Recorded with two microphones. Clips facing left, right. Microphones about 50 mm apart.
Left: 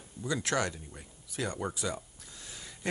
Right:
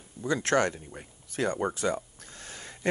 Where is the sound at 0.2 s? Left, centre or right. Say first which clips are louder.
Right 6 dB; right.